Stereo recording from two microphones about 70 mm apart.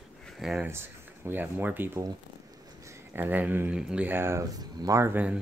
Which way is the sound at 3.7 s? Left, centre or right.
Centre.